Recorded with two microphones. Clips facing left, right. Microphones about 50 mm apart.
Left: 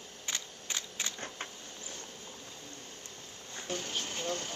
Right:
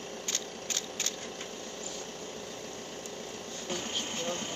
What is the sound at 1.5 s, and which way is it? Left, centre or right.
Vehicle, right.